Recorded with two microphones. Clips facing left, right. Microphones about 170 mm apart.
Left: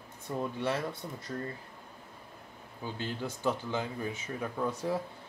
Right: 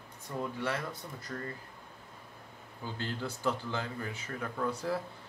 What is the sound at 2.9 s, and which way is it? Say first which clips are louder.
Speech: even; 15° left (ahead or behind).